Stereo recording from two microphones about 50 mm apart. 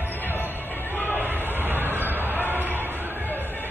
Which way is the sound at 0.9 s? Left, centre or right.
Left.